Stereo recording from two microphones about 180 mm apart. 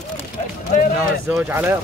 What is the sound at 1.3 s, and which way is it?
Speech, 10° right (ahead or behind).